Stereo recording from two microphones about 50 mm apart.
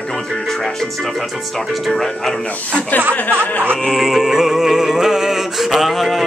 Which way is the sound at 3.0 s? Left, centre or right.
Right.